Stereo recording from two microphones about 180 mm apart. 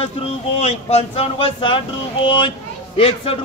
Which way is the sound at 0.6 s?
35° left (ahead or behind).